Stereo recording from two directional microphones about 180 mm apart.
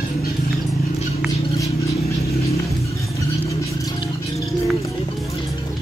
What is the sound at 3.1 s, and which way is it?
Vehicle, 15° left (ahead or behind).